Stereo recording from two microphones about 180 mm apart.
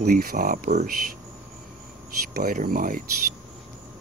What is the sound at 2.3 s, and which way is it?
Speech, 50° right (ahead or behind).